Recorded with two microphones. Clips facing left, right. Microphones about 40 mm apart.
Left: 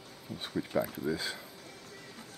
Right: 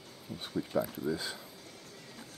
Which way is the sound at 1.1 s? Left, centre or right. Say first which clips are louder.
Left 1 dB; centre.